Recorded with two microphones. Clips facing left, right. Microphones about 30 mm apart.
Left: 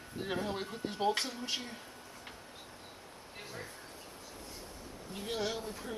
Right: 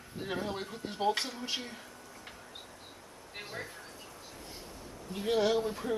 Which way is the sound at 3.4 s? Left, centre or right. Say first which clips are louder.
Right 4 dB; right.